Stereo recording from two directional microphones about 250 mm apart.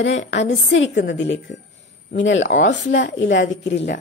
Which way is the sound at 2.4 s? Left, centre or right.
Left.